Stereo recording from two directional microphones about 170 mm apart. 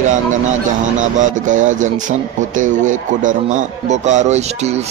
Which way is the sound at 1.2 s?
45° right (ahead or behind).